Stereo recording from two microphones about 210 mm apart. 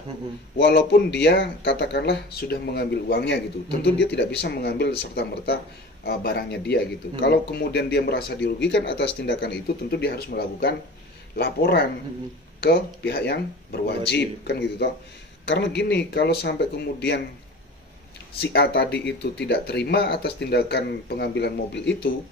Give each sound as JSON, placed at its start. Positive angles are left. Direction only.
{"t": 0.6, "sound": "speech", "side_deg": 55}
{"t": 18.4, "sound": "speech", "side_deg": 50}